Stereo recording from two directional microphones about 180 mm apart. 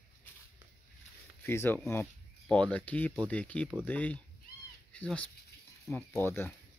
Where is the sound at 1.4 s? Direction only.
10° left (ahead or behind).